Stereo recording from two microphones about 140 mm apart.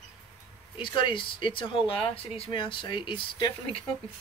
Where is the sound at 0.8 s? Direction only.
35° left (ahead or behind).